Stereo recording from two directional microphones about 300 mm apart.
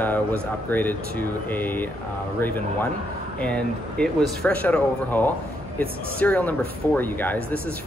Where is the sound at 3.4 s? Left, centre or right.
Centre.